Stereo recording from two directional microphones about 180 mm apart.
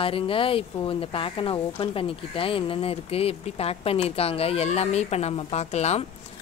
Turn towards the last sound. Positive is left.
turn(degrees=35)  # may be behind; listen again after turning